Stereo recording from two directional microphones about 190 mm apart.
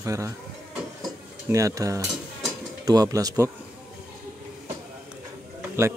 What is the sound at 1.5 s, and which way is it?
Speech, 15° right (ahead or behind).